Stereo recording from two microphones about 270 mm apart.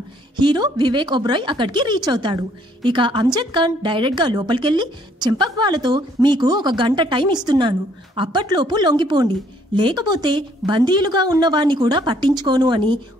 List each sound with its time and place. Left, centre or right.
0.4 s a woman's voice: centre